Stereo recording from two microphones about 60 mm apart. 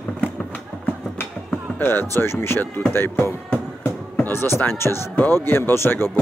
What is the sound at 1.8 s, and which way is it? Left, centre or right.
Speech, left.